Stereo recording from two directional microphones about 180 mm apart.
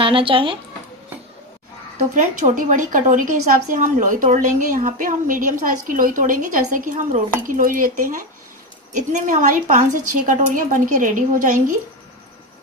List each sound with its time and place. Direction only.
0.0 s speech: 30° right (ahead or behind)
2.1 s a woman's voice: 45° right (ahead or behind)